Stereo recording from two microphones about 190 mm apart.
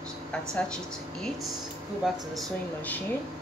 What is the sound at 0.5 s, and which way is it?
Speech, 5° left (ahead or behind).